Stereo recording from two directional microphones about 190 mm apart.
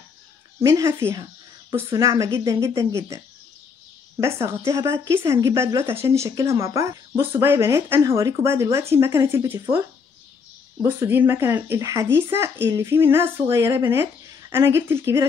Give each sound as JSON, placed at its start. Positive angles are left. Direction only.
{"t": 0.6, "sound": "speech", "side_deg": -15}
{"t": 4.2, "sound": "speech", "side_deg": -15}